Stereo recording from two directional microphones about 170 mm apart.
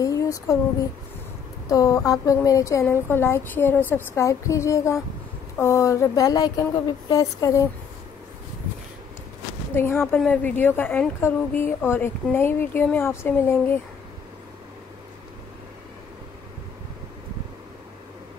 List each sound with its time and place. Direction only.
0.0 s a sound: 20° left (ahead or behind)
1.7 s a woman's voice: 20° left (ahead or behind)
9.8 s a woman's voice: 15° left (ahead or behind)